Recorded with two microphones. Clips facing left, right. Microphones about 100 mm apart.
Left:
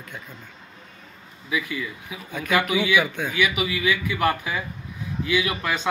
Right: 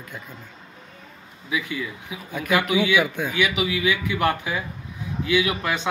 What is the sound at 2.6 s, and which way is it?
Speech, 20° right (ahead or behind).